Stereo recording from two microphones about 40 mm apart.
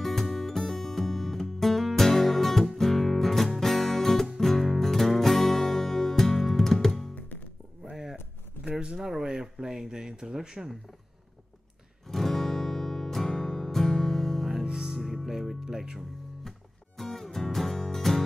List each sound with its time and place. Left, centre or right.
0.0 s music: centre
7.8 s a sound: centre
8.9 s speech: centre
12.1 s music: centre
14.7 s music: centre
15.2 s music: centre
16.4 s music: centre